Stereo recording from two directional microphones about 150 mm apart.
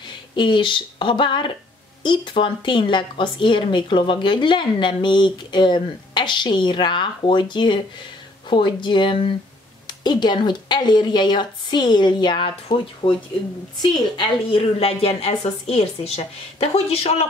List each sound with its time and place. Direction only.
0.0 s a woman's voice: 30° left (ahead or behind)